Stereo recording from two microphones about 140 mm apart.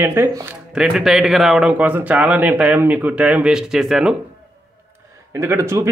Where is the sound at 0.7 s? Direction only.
5° right (ahead or behind).